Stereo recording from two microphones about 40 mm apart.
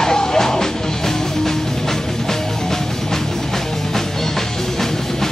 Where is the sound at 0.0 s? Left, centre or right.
Centre.